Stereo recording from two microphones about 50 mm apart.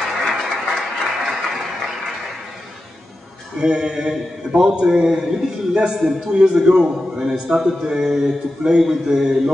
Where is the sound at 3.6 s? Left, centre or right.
Centre.